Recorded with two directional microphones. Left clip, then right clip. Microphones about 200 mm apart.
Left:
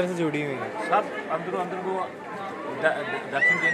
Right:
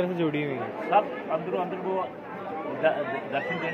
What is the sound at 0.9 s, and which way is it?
Speech, centre (ahead or behind).